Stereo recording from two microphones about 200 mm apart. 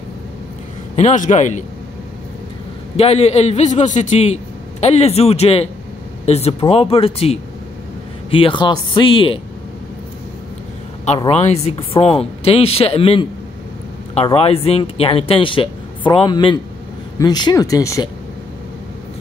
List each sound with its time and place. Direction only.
0.9 s speech: 35° left (ahead or behind)
3.0 s speech: 30° left (ahead or behind)
11.1 s speech: 30° left (ahead or behind)